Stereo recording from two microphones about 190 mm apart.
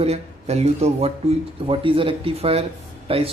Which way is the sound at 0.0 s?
35° right (ahead or behind).